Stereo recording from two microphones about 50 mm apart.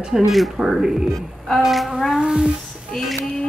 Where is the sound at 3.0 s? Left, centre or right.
Centre.